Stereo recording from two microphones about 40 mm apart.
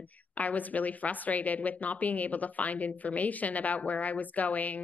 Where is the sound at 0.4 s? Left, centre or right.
Left.